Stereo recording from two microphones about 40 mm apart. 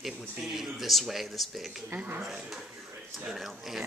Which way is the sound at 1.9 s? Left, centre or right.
Right.